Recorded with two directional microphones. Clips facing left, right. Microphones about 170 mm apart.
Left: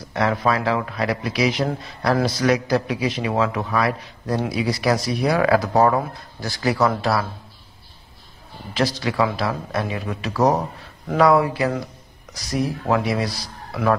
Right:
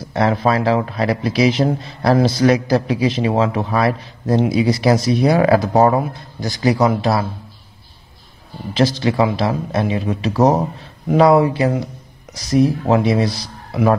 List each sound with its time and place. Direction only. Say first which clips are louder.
0.1 s speech: right 4 dB; 30° right (ahead or behind)
8.7 s speech: right 5 dB; 25° right (ahead or behind)